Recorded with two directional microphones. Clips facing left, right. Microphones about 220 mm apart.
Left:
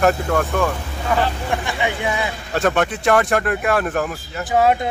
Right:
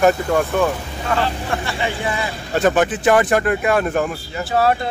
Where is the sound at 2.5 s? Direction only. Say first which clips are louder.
Right 3 dB; centre (ahead or behind).